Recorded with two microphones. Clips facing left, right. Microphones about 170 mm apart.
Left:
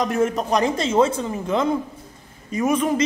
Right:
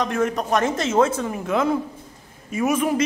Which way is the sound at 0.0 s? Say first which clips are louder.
Left 2 dB; centre (ahead or behind).